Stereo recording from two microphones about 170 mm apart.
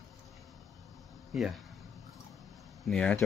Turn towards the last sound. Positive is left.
turn(degrees=5)  # may be behind; listen again after turning